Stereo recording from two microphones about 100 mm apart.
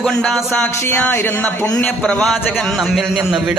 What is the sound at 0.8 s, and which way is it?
Speech, 20° left (ahead or behind).